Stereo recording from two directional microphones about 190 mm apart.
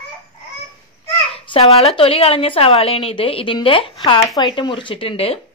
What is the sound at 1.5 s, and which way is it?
A woman's voice, 30° left (ahead or behind).